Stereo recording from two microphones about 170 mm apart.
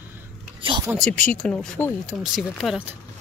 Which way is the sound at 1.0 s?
5° left (ahead or behind).